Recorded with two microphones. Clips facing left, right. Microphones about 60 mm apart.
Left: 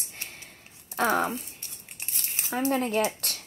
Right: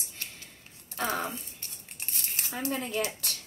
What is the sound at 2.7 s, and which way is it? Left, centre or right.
Speech, left.